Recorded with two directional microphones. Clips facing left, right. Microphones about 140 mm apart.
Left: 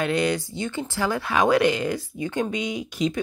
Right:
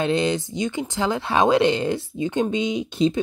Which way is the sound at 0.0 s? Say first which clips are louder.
Right 2 dB; 25° right (ahead or behind).